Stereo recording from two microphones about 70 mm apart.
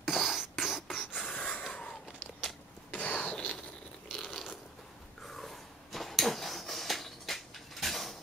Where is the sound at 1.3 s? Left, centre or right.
Centre.